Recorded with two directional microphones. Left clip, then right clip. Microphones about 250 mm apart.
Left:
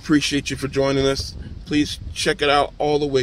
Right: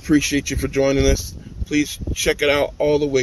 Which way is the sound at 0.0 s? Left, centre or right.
Centre.